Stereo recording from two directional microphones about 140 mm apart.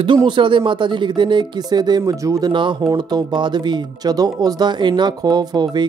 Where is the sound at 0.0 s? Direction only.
35° right (ahead or behind).